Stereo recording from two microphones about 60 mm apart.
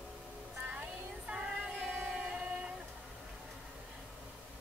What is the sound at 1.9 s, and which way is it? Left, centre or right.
Music, centre.